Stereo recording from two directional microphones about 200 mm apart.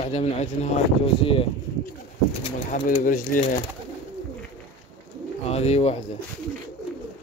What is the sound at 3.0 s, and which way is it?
Speech, 45° left (ahead or behind).